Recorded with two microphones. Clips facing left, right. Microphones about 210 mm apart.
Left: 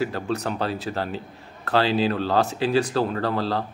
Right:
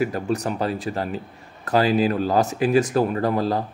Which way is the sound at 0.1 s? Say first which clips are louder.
Right 3 dB; 15° right (ahead or behind).